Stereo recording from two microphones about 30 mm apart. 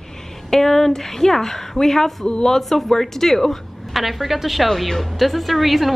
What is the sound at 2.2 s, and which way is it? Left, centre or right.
Speech, left.